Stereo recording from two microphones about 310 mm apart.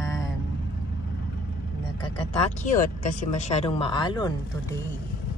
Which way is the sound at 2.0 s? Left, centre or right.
Centre.